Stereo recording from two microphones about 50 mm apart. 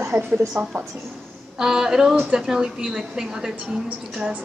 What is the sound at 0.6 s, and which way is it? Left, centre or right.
Speech, right.